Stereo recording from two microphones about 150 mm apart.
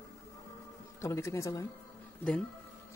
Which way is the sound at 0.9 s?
20° left (ahead or behind).